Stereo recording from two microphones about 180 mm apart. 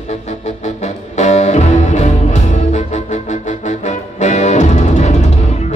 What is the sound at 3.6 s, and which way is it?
Music, 40° left (ahead or behind).